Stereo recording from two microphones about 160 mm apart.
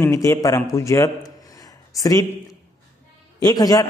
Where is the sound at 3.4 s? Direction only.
25° left (ahead or behind).